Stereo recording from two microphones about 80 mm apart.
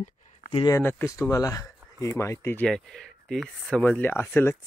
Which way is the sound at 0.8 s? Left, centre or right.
Left.